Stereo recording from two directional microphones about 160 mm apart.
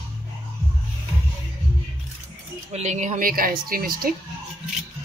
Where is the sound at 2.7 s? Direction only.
45° right (ahead or behind); by 4.1 s 65° right (ahead or behind).